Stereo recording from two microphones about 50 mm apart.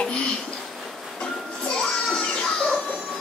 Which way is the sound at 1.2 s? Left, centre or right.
Centre.